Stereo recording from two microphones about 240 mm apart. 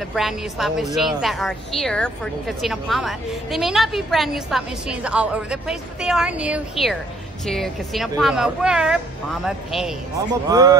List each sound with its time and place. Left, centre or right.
0.1 s a woman's voice: centre
10.2 s speech: centre